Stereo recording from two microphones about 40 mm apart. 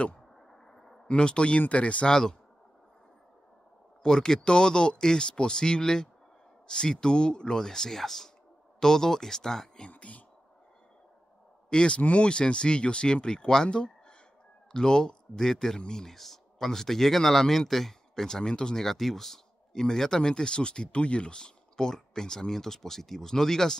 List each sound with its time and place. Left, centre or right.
0.5 s a sound: centre
1.0 s speech: left
2.0 s speech: centre
4.0 s speech: centre
9.8 s speech: left
11.7 s speech: left
18.9 s speech: centre